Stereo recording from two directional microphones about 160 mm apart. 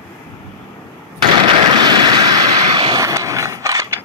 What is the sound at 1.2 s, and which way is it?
Vehicle, 35° right (ahead or behind).